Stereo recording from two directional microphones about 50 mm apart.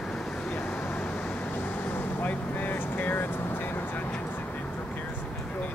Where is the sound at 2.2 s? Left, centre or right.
Left.